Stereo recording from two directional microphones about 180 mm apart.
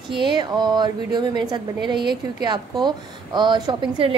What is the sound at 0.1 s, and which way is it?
A woman's voice, 25° right (ahead or behind).